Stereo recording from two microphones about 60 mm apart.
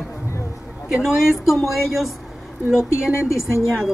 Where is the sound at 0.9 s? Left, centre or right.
Centre.